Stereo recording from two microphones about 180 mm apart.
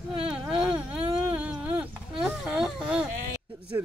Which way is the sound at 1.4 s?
5° right (ahead or behind).